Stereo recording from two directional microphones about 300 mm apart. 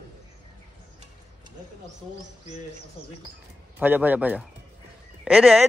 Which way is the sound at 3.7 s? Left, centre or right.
Centre.